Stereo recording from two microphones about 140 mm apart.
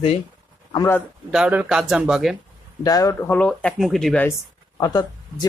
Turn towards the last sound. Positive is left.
turn(degrees=25)  # may be behind; listen again after turning